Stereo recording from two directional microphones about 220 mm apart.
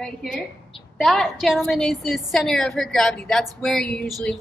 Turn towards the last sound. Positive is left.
turn(degrees=5)  # may be behind; listen again after turning